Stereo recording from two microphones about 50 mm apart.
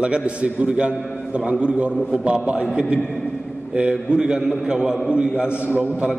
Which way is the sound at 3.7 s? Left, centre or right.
Right.